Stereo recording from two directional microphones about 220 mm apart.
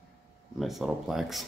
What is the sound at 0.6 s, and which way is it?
Speech, centre (ahead or behind).